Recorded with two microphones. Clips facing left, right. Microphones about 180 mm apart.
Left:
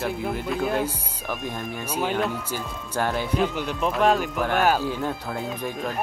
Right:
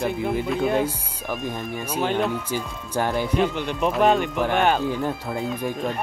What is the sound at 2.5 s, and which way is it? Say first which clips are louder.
Speech: right 3 dB; 10° right (ahead or behind).